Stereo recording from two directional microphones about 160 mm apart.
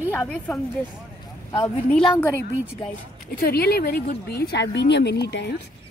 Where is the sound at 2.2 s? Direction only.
15° left (ahead or behind).